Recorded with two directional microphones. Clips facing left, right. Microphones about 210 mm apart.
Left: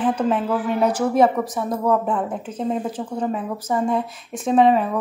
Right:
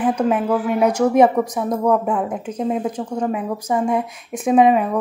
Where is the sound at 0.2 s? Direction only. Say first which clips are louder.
Right 3 dB; 10° right (ahead or behind).